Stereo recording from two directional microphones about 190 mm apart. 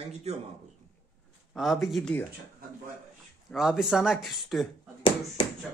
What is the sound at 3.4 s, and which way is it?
Speech, centre (ahead or behind).